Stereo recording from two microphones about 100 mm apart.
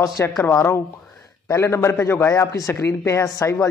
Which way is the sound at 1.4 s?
30° left (ahead or behind).